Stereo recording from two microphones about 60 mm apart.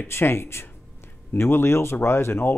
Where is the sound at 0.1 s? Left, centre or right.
Left.